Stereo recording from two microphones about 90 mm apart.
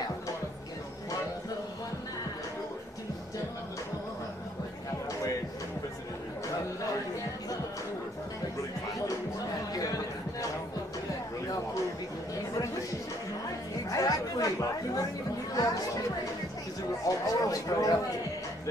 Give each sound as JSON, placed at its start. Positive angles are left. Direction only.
{"t": 9.8, "sound": "a sound", "side_deg": 40}
{"t": 13.8, "sound": "chatter", "side_deg": 40}
{"t": 15.5, "sound": "speech", "side_deg": 40}
{"t": 17.0, "sound": "speech", "side_deg": 40}